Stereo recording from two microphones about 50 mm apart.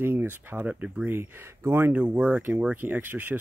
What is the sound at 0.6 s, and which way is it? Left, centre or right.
Speech, right.